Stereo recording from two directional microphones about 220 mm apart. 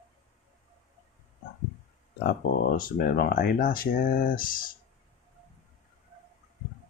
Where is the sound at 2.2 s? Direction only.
40° left (ahead or behind).